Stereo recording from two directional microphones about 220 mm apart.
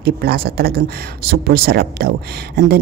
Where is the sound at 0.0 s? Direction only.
45° right (ahead or behind).